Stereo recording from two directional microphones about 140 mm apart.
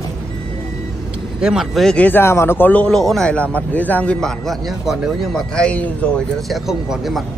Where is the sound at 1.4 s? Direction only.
5° right (ahead or behind).